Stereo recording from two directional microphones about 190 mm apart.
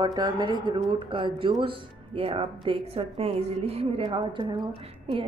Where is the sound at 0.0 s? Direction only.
20° right (ahead or behind).